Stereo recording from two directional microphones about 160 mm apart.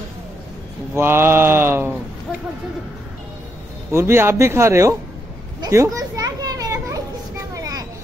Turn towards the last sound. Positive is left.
turn(degrees=-20)  # may be behind; listen again after turning